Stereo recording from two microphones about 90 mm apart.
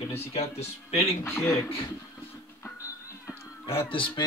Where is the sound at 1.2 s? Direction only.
30° left (ahead or behind).